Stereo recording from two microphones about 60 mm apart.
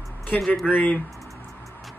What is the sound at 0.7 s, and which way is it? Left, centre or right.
Speech, left.